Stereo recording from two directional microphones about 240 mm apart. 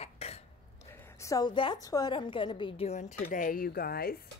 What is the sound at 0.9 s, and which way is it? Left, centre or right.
Speech, centre.